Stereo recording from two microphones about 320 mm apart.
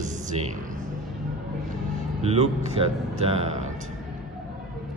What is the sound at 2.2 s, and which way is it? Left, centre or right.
Speech, centre.